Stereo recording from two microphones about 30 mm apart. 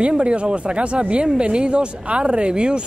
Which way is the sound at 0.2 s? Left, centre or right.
Right.